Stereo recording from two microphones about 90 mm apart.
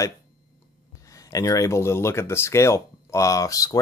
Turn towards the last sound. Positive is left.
turn(degrees=35)  # may be behind; listen again after turning